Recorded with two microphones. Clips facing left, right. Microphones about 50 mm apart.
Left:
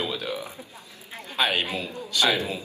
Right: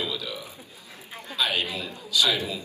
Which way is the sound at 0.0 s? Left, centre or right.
Left.